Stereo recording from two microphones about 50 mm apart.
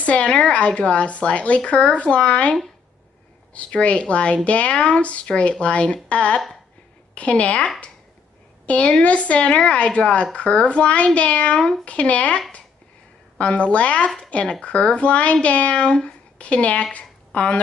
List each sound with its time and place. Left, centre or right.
0.0 s speech: left
13.4 s speech: left